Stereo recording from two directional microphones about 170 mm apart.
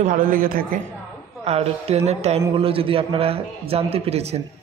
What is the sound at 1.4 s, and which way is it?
A man's voice, 35° right (ahead or behind).